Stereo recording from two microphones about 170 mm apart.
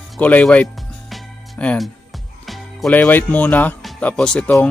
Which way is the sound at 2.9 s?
10° left (ahead or behind).